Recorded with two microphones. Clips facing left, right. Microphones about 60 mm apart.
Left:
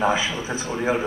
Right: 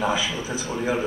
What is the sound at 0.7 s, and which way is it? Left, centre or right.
Speech, centre.